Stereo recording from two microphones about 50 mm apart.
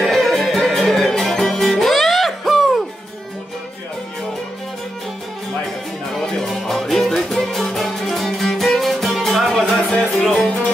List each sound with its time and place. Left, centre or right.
0.1 s music: centre
6.2 s music: centre
9.8 s music: centre